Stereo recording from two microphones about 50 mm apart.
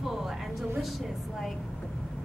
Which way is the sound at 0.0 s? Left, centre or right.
Centre.